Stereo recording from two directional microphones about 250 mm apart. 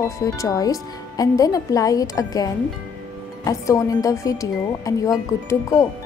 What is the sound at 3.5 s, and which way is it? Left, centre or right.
Speech, centre.